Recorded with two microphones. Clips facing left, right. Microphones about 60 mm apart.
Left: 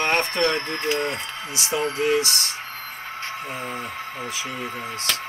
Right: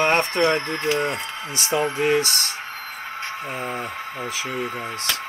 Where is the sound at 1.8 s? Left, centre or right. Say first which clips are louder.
Right 2 dB; centre.